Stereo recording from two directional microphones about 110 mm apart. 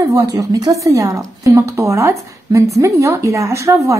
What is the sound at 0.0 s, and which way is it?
A woman's voice, 35° right (ahead or behind).